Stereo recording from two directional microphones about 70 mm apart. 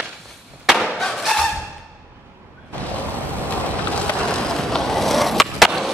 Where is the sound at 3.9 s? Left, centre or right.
Centre.